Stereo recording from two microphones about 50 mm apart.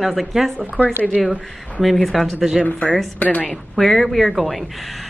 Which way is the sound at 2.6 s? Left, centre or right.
Left.